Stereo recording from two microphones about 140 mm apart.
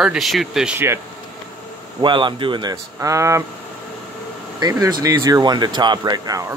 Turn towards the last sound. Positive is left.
turn(degrees=-25)  # may be behind; listen again after turning